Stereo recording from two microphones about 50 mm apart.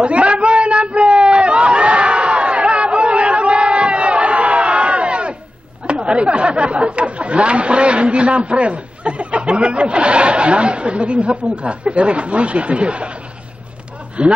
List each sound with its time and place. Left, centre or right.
0.0 s a sound: right
4.7 s crowd: centre
5.9 s speech: right
14.2 s speech: right